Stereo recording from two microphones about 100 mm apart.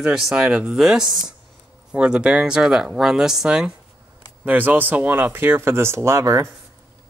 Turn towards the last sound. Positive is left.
turn(degrees=-30)  # may be behind; listen again after turning